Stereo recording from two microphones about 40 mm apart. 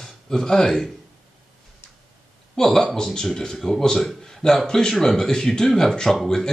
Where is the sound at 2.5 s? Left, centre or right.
Centre.